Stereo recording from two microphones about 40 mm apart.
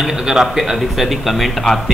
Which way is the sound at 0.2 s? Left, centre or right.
Centre.